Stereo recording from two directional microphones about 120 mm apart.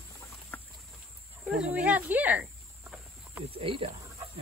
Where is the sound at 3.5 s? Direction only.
55° right (ahead or behind).